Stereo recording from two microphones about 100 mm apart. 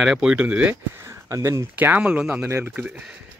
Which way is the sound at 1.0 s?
30° right (ahead or behind).